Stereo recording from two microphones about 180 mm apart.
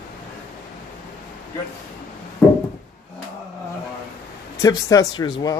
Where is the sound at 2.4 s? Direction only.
5° left (ahead or behind).